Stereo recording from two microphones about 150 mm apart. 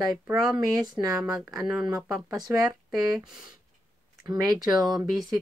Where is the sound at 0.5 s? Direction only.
25° right (ahead or behind).